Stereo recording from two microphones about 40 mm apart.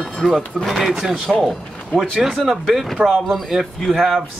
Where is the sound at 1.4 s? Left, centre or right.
Centre.